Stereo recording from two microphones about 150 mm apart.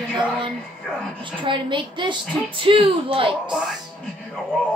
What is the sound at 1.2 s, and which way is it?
A woman's voice, 35° right (ahead or behind).